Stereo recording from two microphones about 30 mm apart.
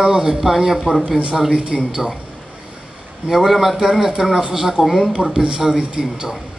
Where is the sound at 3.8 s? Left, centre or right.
Centre.